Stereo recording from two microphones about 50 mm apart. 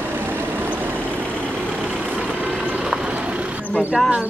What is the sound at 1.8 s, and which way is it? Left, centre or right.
Vehicle, right.